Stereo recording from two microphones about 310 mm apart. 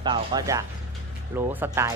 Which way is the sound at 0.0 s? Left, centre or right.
Centre.